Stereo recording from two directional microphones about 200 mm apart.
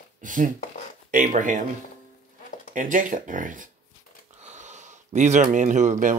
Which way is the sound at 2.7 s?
40° right (ahead or behind).